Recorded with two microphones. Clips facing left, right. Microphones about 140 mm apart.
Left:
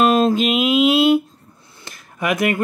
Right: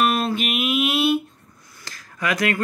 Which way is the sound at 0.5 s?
90° left.